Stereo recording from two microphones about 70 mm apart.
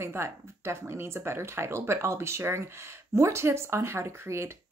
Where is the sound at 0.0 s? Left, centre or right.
Right.